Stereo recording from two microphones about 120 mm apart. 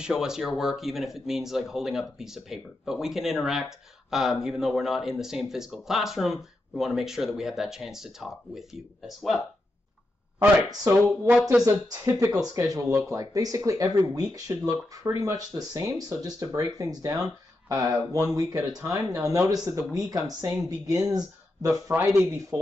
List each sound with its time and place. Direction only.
0.0 s speech: 5° right (ahead or behind)
11.6 s speech: 25° right (ahead or behind)